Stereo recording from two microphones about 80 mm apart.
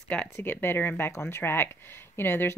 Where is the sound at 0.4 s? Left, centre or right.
Left.